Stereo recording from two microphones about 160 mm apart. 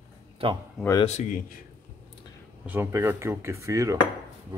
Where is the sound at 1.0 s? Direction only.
50° left (ahead or behind).